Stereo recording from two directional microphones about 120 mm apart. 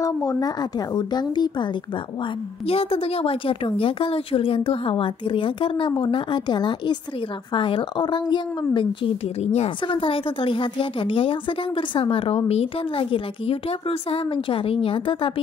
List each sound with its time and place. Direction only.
0.0 s a woman's voice: 30° left (ahead or behind)
2.6 s a woman's voice: 55° left (ahead or behind)
9.4 s a woman's voice: 65° left (ahead or behind)
9.9 s a woman's voice: 50° left (ahead or behind)